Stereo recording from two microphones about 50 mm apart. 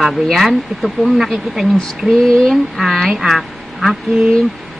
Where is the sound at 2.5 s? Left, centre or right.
Centre.